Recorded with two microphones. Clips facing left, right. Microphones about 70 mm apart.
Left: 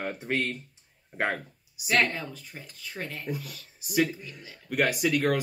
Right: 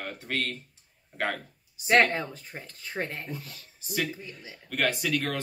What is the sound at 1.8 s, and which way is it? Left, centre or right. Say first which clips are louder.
Speech: right 4 dB; right.